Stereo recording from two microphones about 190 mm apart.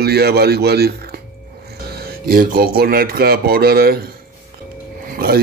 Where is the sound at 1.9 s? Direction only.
55° right (ahead or behind).